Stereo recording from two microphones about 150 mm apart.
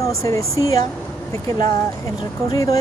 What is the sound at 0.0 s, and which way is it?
Speech, 20° left (ahead or behind).